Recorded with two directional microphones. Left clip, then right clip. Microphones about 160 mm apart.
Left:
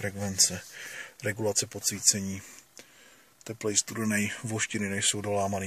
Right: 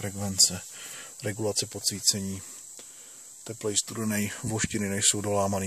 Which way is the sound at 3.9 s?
15° right (ahead or behind).